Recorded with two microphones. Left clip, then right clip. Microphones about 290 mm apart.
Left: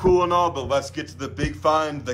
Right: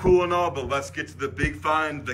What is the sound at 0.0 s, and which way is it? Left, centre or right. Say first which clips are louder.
A man's voice: left 2 dB; centre.